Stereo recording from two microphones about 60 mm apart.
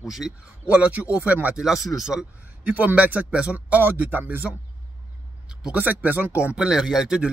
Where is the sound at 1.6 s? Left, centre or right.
Centre.